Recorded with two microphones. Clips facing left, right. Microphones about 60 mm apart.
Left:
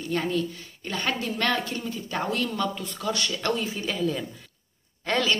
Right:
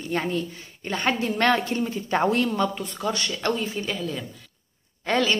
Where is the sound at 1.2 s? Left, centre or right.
Right.